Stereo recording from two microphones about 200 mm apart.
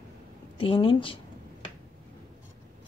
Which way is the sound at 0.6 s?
25° left (ahead or behind).